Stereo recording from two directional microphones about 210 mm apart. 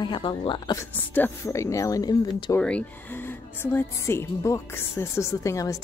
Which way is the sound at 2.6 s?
5° left (ahead or behind).